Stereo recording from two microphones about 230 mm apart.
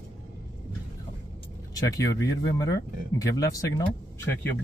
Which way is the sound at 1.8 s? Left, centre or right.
Centre.